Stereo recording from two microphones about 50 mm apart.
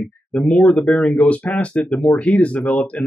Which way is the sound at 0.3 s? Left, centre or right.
Centre.